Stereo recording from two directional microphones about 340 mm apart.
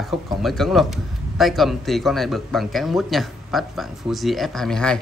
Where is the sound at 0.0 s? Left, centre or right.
Centre.